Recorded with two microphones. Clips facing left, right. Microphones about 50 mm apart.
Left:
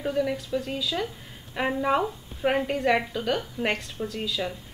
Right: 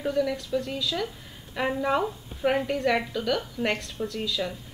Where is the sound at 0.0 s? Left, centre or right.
Centre.